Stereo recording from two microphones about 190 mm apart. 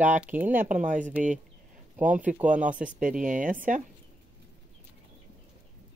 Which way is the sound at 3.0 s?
45° right (ahead or behind).